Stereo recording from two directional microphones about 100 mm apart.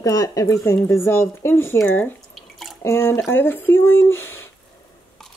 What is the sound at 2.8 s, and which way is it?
A woman's voice, 25° left (ahead or behind).